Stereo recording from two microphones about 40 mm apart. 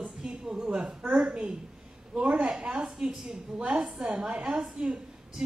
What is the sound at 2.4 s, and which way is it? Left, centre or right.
A woman's voice, centre.